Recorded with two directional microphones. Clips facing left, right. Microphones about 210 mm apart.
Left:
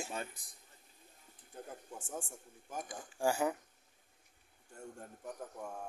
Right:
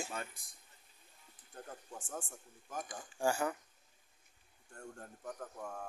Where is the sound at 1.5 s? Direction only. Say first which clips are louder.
Left 1 dB; 10° left (ahead or behind).